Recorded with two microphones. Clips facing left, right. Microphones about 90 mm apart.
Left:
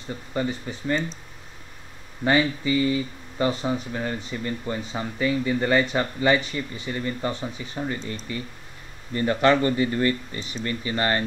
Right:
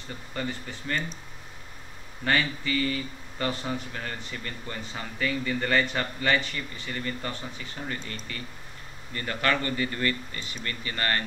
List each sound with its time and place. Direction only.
0.3 s speech: 20° left (ahead or behind)
2.2 s speech: 20° left (ahead or behind)